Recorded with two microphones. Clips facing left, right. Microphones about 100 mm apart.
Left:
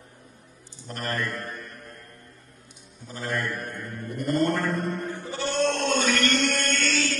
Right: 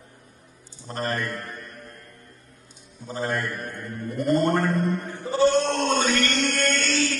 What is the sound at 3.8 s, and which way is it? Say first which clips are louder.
Bleat: right 6 dB; 30° right (ahead or behind).